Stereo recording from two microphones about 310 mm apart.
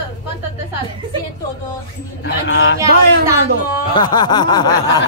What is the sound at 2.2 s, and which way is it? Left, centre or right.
Speech, left.